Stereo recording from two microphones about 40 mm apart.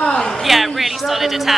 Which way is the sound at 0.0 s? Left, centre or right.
Left.